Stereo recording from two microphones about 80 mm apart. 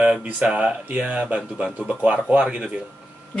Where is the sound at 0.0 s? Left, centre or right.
Centre.